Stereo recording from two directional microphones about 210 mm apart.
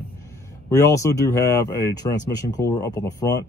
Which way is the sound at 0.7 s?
15° left (ahead or behind).